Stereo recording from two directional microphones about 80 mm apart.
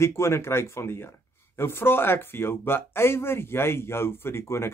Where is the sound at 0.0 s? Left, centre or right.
Left.